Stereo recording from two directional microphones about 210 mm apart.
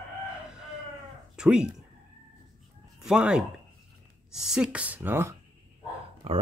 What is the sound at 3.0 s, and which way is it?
Speech, 5° right (ahead or behind).